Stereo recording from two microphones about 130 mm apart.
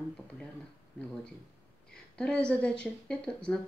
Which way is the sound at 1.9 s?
5° left (ahead or behind).